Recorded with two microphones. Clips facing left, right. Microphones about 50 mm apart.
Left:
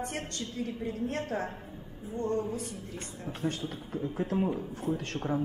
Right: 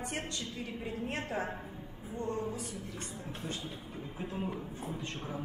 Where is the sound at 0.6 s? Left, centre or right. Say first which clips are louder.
Left 8 dB; right.